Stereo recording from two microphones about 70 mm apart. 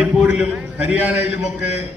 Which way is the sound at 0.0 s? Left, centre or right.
Centre.